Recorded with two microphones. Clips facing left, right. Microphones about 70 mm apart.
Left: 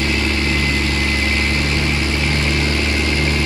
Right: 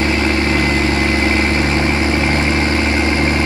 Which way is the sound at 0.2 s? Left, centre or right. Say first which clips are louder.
Right 4 dB; right.